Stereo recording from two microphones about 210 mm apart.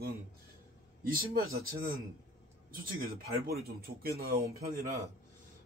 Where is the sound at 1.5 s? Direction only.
45° right (ahead or behind).